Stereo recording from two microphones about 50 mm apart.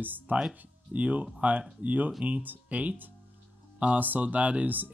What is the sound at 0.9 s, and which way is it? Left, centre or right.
Speech, right.